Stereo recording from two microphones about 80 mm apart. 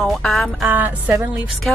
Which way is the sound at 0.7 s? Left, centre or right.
Centre.